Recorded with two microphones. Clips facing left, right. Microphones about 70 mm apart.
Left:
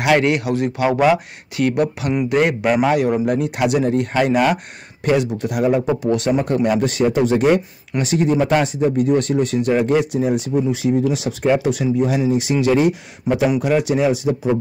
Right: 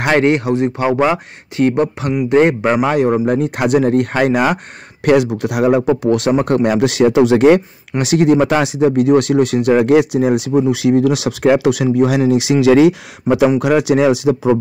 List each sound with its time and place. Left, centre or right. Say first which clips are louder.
0.0 s speech: right 3 dB; right
5.0 s speech: right 5 dB; right
6.0 s speech: right 4 dB; right
8.0 s speech: right 5 dB; right
12.3 s speech: right 5 dB; right
13.3 s speech: right 5 dB; right
13.6 s speech: right 4 dB; right